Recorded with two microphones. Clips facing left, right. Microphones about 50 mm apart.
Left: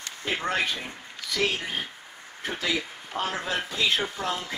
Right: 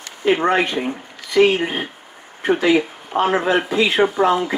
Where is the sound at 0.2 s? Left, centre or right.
Right.